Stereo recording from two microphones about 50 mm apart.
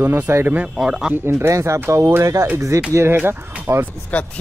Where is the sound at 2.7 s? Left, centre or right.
Right.